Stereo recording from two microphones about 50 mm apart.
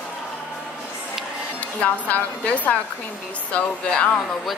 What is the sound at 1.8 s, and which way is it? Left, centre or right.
Speech, left.